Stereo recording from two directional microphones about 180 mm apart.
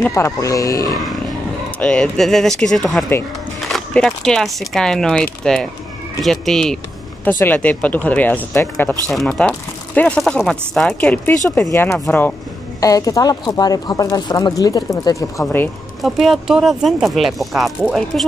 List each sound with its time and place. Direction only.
0.1 s speech: 15° left (ahead or behind)
1.8 s speech: 5° left (ahead or behind)
9.1 s speech: centre (ahead or behind)
16.0 s speech: centre (ahead or behind)